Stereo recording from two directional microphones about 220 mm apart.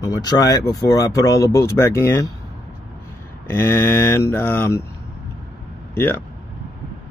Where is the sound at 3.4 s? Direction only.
10° left (ahead or behind).